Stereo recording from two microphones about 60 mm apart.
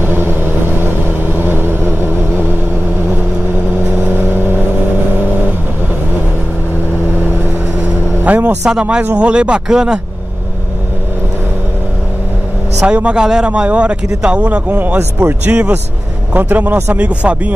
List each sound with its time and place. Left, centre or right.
0.0 s vehicle: right
4.0 s vehicle: right
8.2 s vehicle: right
8.6 s a man's voice: centre
12.8 s a man's voice: centre
15.0 s a man's voice: right